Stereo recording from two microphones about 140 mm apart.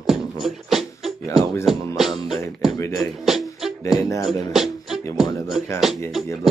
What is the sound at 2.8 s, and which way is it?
Speech, 25° left (ahead or behind).